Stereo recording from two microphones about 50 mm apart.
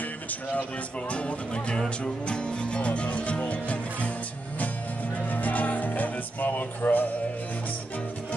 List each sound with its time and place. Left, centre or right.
1.1 s music: left
5.1 s music: left